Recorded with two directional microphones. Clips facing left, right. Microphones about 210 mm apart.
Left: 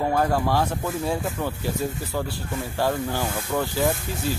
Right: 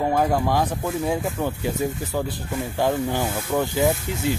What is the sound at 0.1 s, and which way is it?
Speech, 15° right (ahead or behind).